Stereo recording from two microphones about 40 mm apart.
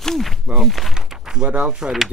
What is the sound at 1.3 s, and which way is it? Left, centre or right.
Speech, right.